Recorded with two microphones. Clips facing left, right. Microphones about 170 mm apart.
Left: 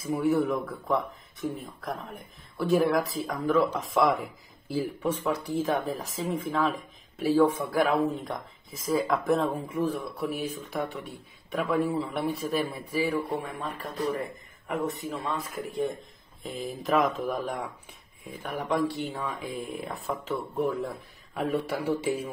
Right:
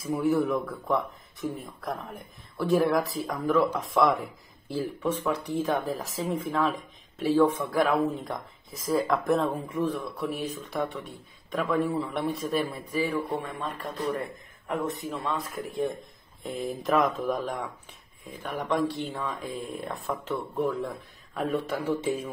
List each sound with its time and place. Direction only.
0.0 s speech: centre (ahead or behind)
18.2 s speech: 5° left (ahead or behind)